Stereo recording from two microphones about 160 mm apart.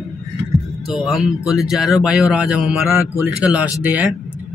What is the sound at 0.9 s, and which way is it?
Speech, centre (ahead or behind).